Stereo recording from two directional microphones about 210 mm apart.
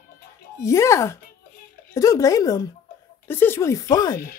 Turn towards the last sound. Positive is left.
turn(degrees=20)  # may be behind; listen again after turning